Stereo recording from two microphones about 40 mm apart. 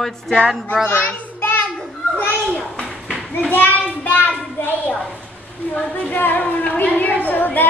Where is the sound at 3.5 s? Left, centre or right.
Left.